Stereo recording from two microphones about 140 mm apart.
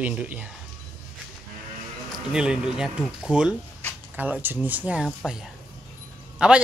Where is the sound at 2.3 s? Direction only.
5° right (ahead or behind).